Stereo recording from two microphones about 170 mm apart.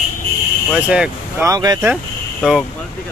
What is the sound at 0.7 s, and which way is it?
Speech, 5° right (ahead or behind).